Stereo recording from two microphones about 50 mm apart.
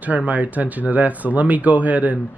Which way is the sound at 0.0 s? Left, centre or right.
Right.